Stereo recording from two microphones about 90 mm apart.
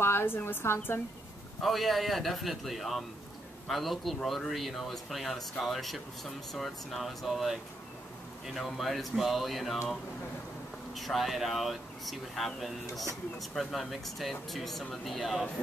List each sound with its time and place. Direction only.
0.0 s a woman's voice: 25° left (ahead or behind)
1.6 s speech: centre (ahead or behind)
11.0 s speech: centre (ahead or behind)